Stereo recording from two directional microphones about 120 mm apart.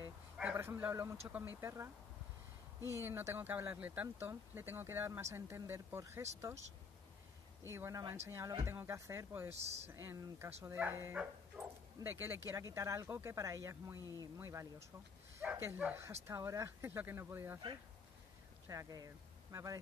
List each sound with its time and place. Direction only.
0.0 s a sound: 15° right (ahead or behind)
1.6 s speech: 25° right (ahead or behind)
3.0 s speech: 20° right (ahead or behind)
7.7 s speech: 25° right (ahead or behind)
18.7 s speech: 30° right (ahead or behind)